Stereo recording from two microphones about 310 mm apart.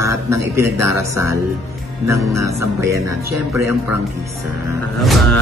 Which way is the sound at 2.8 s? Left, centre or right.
Centre.